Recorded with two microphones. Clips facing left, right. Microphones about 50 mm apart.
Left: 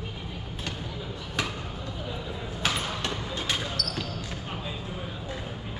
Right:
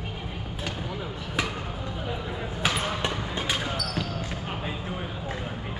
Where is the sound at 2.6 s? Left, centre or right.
Centre.